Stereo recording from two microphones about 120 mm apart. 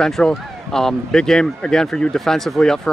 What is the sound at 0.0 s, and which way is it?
Speech, 5° left (ahead or behind).